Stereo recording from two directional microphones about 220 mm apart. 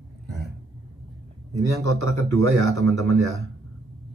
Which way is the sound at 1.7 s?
15° left (ahead or behind).